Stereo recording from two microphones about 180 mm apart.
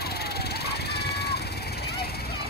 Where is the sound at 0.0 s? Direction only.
60° left (ahead or behind).